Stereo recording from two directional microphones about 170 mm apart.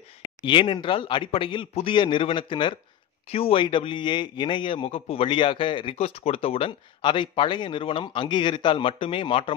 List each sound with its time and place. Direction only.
0.4 s a man's voice: 30° left (ahead or behind)